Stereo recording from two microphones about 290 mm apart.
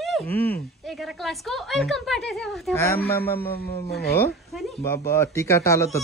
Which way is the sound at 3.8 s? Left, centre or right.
Left.